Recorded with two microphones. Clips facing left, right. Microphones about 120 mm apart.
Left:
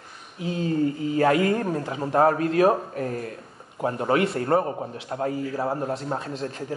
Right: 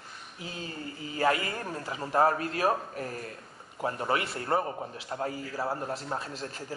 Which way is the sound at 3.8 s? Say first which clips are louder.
Left 6 dB; 20° left (ahead or behind).